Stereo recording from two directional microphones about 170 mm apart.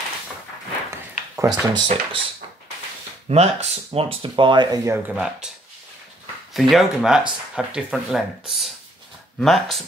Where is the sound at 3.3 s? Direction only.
40° right (ahead or behind).